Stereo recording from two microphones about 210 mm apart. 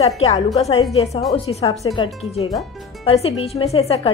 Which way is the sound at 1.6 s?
20° left (ahead or behind).